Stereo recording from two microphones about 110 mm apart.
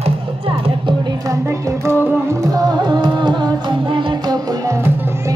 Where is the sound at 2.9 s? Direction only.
45° right (ahead or behind).